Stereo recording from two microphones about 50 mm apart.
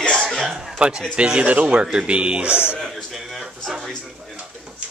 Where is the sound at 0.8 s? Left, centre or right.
Centre.